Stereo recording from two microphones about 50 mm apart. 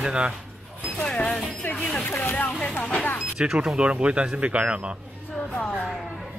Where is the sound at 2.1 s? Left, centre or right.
Left.